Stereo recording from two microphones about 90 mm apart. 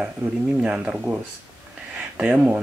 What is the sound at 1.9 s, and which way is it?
Speech, 10° right (ahead or behind).